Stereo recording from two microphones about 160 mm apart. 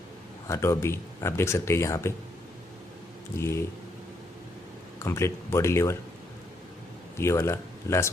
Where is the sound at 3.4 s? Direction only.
15° left (ahead or behind).